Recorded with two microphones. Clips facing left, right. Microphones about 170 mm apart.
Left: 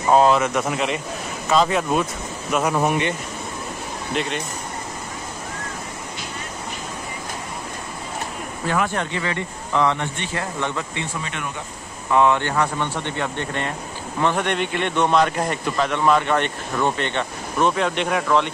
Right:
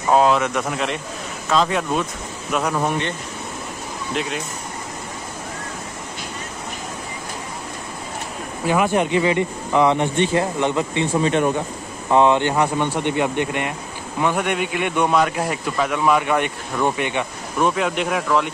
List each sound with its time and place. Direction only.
0.1 s a man's voice: centre (ahead or behind)
4.1 s a man's voice: centre (ahead or behind)
8.6 s speech: 10° right (ahead or behind)
11.1 s speech: 30° right (ahead or behind)
12.1 s speech: 20° right (ahead or behind); by 18.5 s 5° right (ahead or behind)